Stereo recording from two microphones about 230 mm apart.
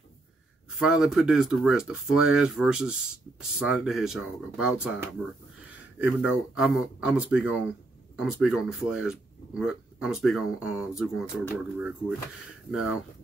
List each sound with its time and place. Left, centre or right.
0.7 s speech: centre